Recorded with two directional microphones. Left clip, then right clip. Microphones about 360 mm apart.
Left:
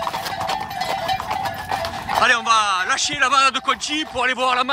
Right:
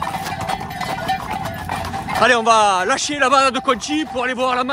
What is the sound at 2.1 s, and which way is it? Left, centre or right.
Speech, centre.